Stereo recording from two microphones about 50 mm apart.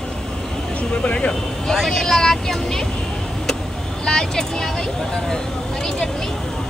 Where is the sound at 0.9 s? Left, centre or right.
Left.